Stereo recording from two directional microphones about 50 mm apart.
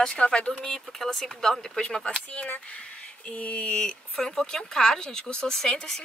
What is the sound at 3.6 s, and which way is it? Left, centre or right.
Speech, centre.